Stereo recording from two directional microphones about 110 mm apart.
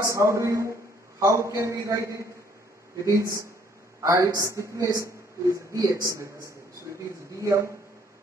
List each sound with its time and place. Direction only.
0.0 s a man's voice: 30° right (ahead or behind)
7.3 s a woman's voice: 25° right (ahead or behind)